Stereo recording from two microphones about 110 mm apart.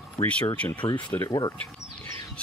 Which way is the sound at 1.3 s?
40° left (ahead or behind).